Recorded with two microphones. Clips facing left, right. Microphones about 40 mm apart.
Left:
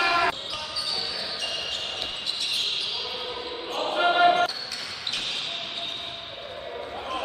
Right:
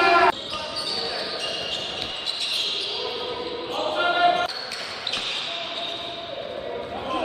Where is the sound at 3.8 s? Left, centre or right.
Centre.